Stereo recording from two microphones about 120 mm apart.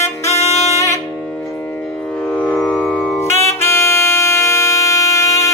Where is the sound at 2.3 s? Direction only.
10° left (ahead or behind).